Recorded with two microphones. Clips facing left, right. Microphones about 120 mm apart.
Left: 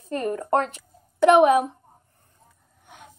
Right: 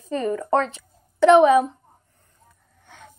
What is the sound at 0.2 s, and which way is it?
A woman's voice, 15° left (ahead or behind).